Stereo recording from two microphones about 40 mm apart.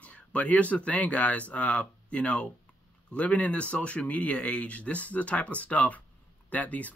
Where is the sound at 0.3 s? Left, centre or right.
Left.